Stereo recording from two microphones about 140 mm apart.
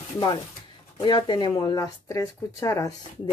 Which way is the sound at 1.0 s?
30° left (ahead or behind).